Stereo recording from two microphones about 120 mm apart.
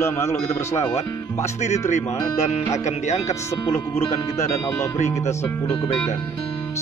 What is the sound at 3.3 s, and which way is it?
Speech, 25° left (ahead or behind).